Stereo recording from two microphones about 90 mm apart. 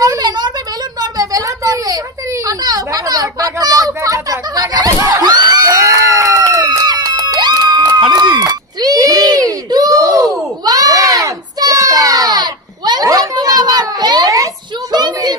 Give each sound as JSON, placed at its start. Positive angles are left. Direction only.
{"t": 0.0, "sound": "a sound", "side_deg": -45}
{"t": 5.1, "sound": "crowd", "side_deg": -45}
{"t": 6.7, "sound": "music", "side_deg": -40}
{"t": 8.1, "sound": "baby cry", "side_deg": -50}